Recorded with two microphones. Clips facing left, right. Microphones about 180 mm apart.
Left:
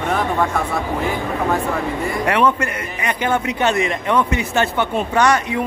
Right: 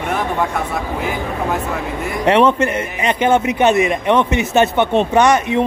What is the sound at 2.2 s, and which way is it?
A man's voice, 25° right (ahead or behind).